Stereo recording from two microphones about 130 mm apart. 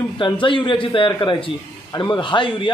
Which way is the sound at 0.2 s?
40° left (ahead or behind).